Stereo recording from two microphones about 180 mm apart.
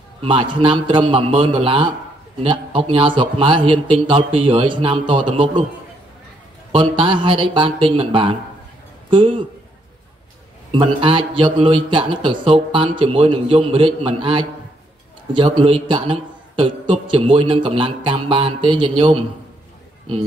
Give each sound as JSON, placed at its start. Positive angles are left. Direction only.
{"t": 0.2, "sound": "a man's voice", "side_deg": -30}
{"t": 6.7, "sound": "a man's voice", "side_deg": -30}
{"t": 10.7, "sound": "a man's voice", "side_deg": -30}